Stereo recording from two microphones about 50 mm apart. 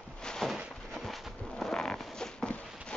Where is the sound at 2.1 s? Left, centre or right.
Centre.